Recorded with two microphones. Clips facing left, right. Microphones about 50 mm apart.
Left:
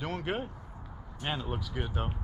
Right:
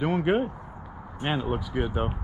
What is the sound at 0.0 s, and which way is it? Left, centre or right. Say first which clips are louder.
Speech: right 10 dB; centre.